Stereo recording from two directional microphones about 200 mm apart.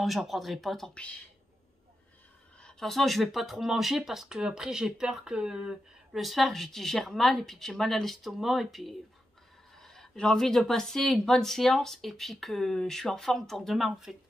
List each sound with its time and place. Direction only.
0.0 s speech: centre (ahead or behind)
2.6 s speech: centre (ahead or behind)